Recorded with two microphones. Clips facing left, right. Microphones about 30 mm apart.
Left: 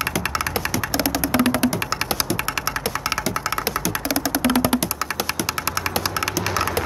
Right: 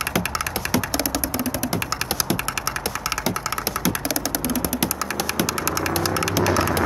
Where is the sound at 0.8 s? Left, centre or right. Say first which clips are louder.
Left 2 dB; centre.